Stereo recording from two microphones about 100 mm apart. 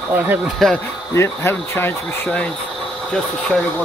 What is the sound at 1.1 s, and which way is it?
Speech, 25° left (ahead or behind).